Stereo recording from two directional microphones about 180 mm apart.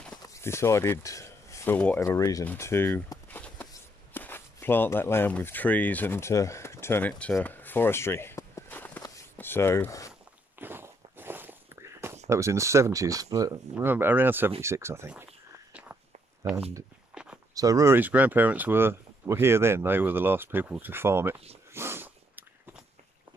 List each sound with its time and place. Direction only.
0.2 s speech: 15° left (ahead or behind)
9.0 s walk: 15° left (ahead or behind)
10.6 s walk: 10° right (ahead or behind)
12.3 s speech: 15° right (ahead or behind)
17.1 s a sound: 5° right (ahead or behind)
17.6 s speech: 20° right (ahead or behind)
21.7 s snort: 15° right (ahead or behind)